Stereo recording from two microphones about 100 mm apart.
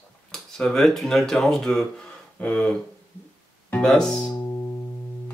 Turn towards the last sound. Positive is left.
turn(degrees=35)  # may be behind; listen again after turning